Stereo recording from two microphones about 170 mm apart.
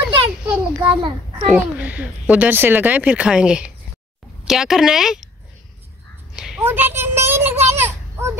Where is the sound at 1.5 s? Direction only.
10° right (ahead or behind).